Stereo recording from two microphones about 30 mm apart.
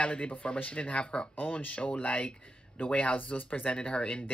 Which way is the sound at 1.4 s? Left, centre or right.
Left.